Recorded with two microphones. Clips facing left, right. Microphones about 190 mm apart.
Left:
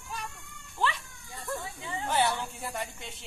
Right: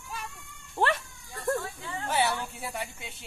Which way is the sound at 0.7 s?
60° right (ahead or behind).